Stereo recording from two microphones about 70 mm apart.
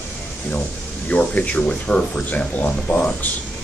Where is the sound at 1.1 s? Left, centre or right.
Left.